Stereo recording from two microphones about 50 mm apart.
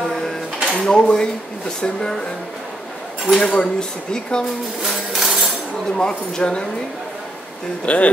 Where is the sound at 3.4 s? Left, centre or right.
Centre.